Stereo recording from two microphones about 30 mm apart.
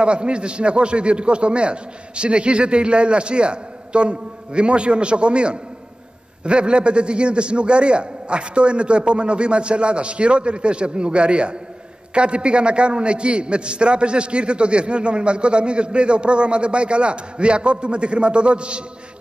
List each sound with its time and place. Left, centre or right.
0.0 s a man's voice: right